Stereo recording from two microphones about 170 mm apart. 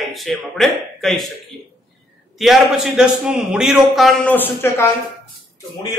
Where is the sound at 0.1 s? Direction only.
Centre (ahead or behind).